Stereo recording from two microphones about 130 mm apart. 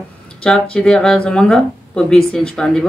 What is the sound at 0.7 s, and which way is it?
Speech, 5° left (ahead or behind).